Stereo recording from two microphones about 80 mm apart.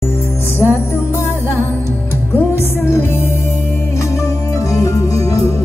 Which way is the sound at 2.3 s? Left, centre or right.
Left.